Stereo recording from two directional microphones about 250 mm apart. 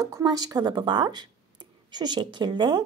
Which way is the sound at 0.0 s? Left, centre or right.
Centre.